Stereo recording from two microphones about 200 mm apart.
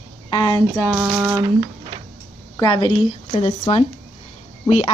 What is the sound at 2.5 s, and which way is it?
A woman's voice, 25° left (ahead or behind).